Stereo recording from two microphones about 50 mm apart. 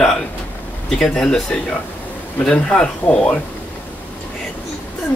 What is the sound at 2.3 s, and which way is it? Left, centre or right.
Speech, left.